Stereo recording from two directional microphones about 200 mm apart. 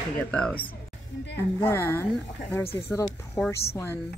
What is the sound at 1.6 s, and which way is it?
Speech, 10° left (ahead or behind).